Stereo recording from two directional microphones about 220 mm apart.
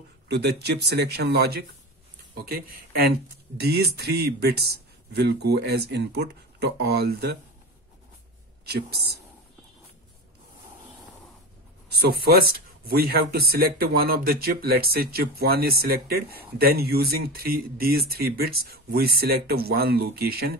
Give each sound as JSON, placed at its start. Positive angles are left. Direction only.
{"t": 0.3, "sound": "speech", "side_deg": -50}
{"t": 8.6, "sound": "speech", "side_deg": -45}
{"t": 11.9, "sound": "speech", "side_deg": -45}